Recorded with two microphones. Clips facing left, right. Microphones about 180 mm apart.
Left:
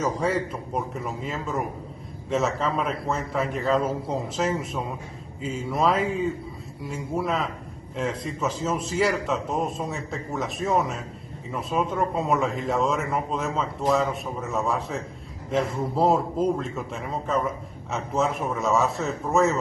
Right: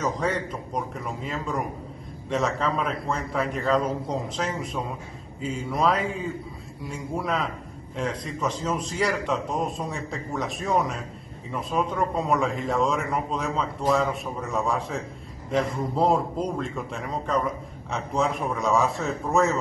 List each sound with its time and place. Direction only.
0.0 s a man's voice: 5° left (ahead or behind)